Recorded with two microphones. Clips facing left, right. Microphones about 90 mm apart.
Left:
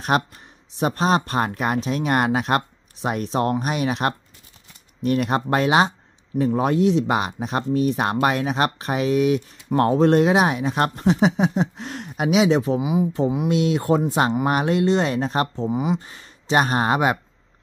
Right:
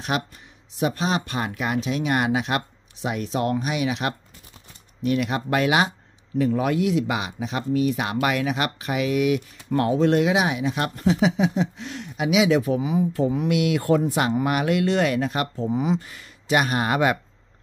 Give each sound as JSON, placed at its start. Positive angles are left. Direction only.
{"t": 0.1, "sound": "speech", "side_deg": 45}
{"t": 7.2, "sound": "speech", "side_deg": 40}
{"t": 15.7, "sound": "speech", "side_deg": 5}
{"t": 16.0, "sound": "speech", "side_deg": 30}